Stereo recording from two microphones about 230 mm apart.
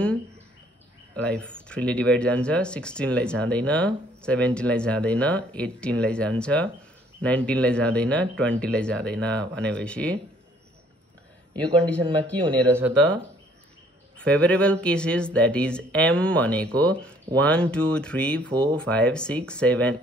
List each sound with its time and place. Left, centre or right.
1.1 s speech: centre
11.5 s speech: centre
12.6 s speech: centre
14.1 s speech: centre
18.5 s speech: right
18.8 s speech: centre